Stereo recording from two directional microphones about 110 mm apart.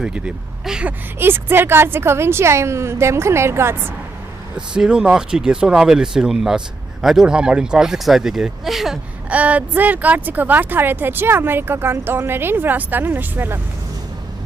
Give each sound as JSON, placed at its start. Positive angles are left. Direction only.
{"t": 0.0, "sound": "speech", "side_deg": -10}
{"t": 1.2, "sound": "a woman's voice", "side_deg": -20}
{"t": 4.6, "sound": "speech", "side_deg": -5}